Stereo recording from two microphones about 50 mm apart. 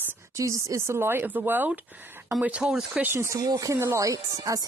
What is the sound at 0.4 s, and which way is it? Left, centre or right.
Speech, right.